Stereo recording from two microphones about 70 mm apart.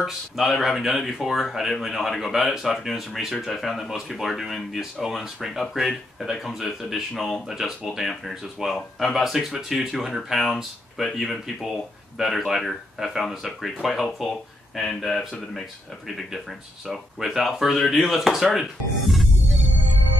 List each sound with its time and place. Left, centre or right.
0.0 s speech: centre
16.8 s speech: centre